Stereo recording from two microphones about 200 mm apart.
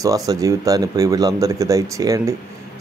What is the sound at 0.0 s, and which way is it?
Speech, 15° right (ahead or behind).